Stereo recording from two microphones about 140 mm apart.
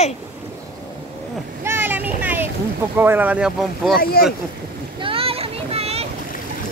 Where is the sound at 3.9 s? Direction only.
90° left.